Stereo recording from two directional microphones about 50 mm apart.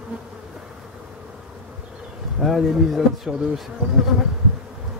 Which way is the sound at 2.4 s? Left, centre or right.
Centre.